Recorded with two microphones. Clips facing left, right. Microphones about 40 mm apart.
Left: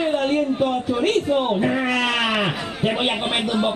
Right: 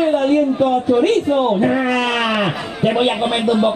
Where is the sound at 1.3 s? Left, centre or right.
Centre.